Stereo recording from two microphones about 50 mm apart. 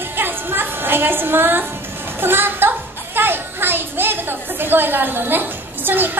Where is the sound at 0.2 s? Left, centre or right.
Right.